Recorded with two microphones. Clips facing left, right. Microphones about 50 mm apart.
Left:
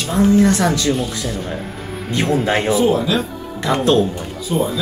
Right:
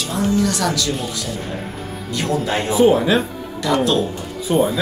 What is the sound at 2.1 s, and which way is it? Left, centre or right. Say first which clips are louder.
Speech: left 3 dB; left.